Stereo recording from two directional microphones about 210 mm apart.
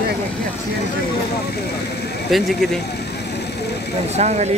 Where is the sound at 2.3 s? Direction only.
Centre (ahead or behind).